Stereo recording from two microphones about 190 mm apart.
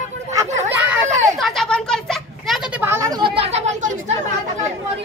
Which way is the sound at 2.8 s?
15° right (ahead or behind).